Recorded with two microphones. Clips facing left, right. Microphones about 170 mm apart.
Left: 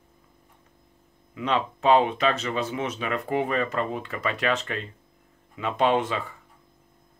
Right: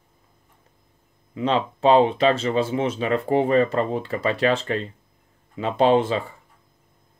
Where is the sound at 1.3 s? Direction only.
30° right (ahead or behind).